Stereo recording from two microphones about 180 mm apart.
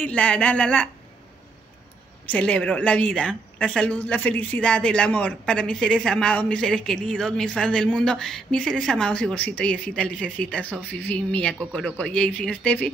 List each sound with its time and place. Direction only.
0.0 s a woman's voice: 10° left (ahead or behind)
2.3 s a woman's voice: 5° left (ahead or behind)